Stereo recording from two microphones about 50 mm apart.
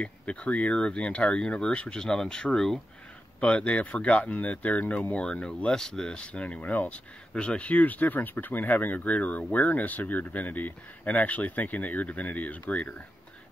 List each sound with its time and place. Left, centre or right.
0.0 s speech: left
3.3 s speech: left
5.2 s speech: centre; by 7.0 s left
7.3 s speech: left